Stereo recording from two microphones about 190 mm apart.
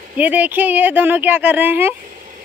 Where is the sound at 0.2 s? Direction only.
10° right (ahead or behind).